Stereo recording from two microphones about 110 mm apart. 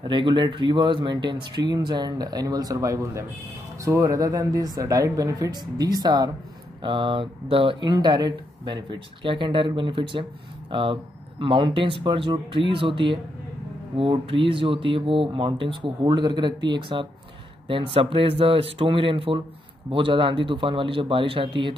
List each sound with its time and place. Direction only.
0.0 s speech: 45° right (ahead or behind)
6.8 s speech: 50° right (ahead or behind)